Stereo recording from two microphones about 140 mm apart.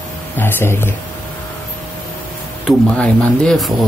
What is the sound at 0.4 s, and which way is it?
Speech, 15° left (ahead or behind).